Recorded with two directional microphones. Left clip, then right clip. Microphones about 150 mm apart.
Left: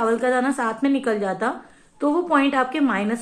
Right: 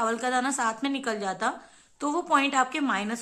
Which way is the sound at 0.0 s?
25° right (ahead or behind).